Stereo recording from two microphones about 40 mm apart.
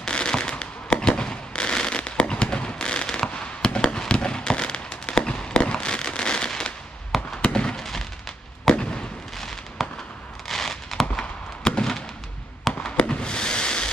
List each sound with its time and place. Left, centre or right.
0.0 s fireworks: left
7.1 s fireworks: centre
8.6 s fireworks: left
9.4 s fireworks: centre
10.5 s a sound: centre
11.6 s fireworks: left
12.9 s fireworks: left